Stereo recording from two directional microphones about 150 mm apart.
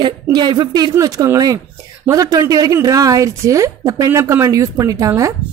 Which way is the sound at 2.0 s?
25° right (ahead or behind).